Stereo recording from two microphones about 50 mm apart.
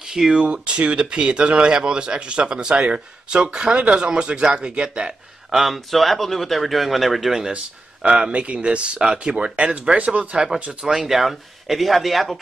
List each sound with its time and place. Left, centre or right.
0.0 s speech: centre
0.4 s speech: right
5.6 s speech: centre
7.5 s speech: right
10.9 s speech: centre